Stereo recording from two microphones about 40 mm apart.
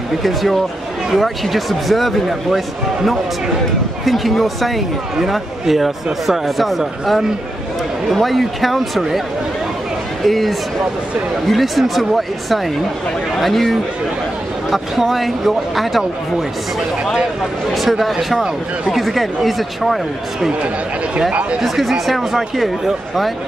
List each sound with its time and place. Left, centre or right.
0.2 s speech: centre
4.0 s speech: centre
10.2 s speech: centre
17.7 s speech: centre
21.3 s speech: right
21.5 s speech: centre